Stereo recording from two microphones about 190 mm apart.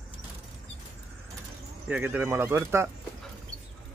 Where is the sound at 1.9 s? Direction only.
10° right (ahead or behind).